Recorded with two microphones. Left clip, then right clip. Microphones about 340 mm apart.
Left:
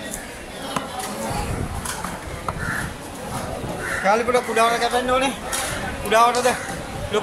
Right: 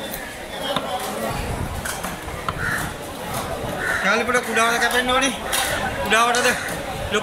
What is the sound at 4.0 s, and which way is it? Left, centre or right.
Speech, centre.